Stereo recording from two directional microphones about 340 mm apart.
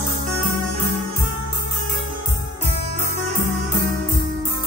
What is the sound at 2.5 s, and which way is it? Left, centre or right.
Music, centre.